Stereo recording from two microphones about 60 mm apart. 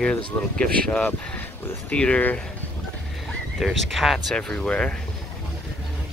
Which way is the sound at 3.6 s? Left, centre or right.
Centre.